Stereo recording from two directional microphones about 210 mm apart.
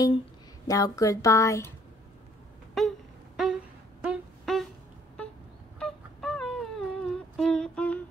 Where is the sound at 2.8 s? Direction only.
Centre (ahead or behind).